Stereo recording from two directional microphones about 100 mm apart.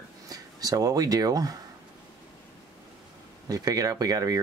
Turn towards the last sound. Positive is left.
turn(degrees=-40)  # may be behind; listen again after turning